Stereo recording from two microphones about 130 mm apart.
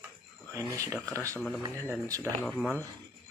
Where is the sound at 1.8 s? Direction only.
25° right (ahead or behind).